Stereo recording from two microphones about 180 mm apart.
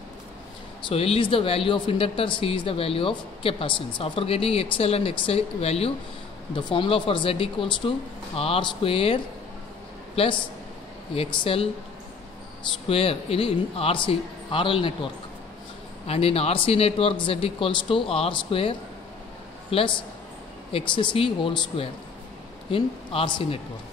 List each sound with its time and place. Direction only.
0.8 s speech: 30° left (ahead or behind)
11.4 s speech: 30° left (ahead or behind)
12.8 s speech: 30° left (ahead or behind)
16.1 s speech: 35° left (ahead or behind)